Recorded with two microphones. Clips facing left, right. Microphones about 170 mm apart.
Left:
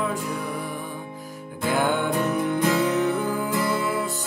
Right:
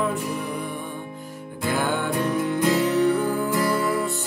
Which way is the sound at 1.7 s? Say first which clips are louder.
Left 1 dB; 20° left (ahead or behind).